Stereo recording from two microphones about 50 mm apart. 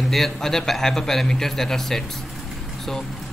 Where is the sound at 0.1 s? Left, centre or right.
Centre.